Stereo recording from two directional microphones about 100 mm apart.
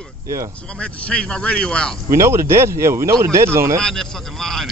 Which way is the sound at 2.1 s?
30° right (ahead or behind).